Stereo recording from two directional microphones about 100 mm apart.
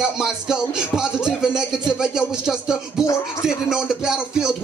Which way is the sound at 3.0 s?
30° left (ahead or behind).